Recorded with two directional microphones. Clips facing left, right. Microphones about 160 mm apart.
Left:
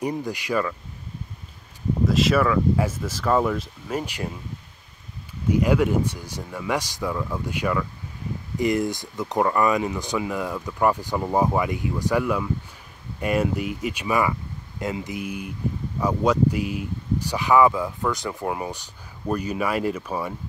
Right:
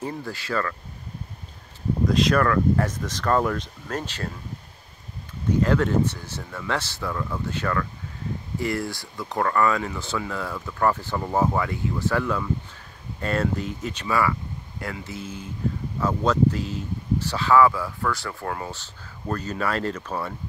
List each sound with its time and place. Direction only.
0.0 s speech: 15° left (ahead or behind)
2.0 s speech: 5° left (ahead or behind)
5.5 s speech: 10° left (ahead or behind)